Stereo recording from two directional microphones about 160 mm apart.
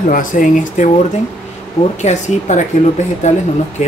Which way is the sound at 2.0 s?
45° left (ahead or behind).